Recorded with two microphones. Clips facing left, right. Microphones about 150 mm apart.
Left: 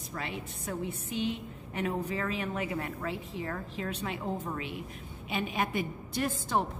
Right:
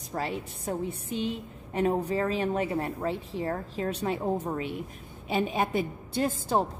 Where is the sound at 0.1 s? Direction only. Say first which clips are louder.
Right 6 dB; 35° right (ahead or behind).